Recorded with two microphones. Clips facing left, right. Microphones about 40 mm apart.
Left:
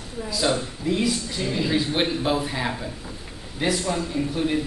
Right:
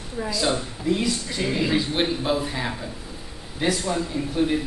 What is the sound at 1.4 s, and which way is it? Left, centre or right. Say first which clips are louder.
Speech: right 3 dB; right.